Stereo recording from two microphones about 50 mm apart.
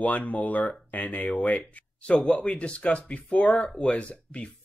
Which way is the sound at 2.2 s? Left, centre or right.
Left.